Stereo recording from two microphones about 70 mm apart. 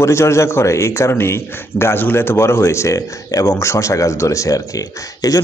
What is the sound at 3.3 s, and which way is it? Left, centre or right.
Speech, left.